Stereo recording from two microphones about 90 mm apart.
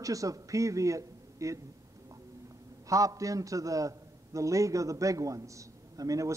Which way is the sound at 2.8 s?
40° right (ahead or behind).